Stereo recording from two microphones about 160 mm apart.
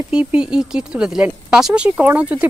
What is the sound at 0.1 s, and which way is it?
Speech, 5° right (ahead or behind).